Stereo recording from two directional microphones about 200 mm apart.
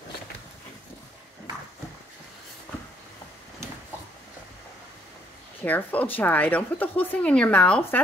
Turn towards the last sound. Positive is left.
turn(degrees=5)  # may be behind; listen again after turning